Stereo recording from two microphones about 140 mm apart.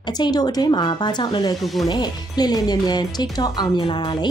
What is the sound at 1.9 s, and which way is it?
Speech, 30° left (ahead or behind).